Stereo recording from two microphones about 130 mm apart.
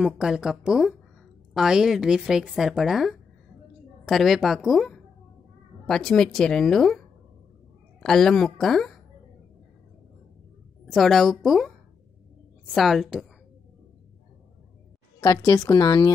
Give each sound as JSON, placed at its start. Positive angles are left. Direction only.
{"t": 0.0, "sound": "a woman's voice", "side_deg": -5}
{"t": 8.0, "sound": "a woman's voice", "side_deg": 5}
{"t": 10.9, "sound": "a woman's voice", "side_deg": 0}
{"t": 12.7, "sound": "a woman's voice", "side_deg": 0}
{"t": 15.1, "sound": "speech", "side_deg": 25}